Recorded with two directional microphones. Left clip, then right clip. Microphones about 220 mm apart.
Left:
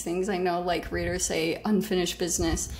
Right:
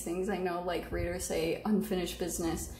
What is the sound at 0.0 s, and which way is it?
A woman's voice, 35° left (ahead or behind).